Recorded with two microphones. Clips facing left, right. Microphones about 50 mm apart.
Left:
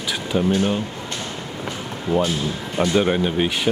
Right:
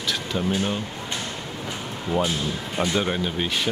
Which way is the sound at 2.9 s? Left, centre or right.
Centre.